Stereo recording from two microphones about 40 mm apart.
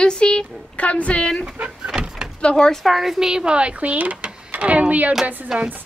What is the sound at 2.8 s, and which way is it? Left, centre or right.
Speech, centre.